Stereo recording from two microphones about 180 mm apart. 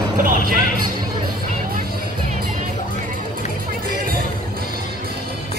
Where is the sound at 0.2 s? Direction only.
45° right (ahead or behind).